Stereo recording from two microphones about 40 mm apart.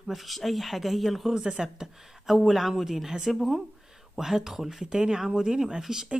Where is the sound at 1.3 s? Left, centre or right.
Centre.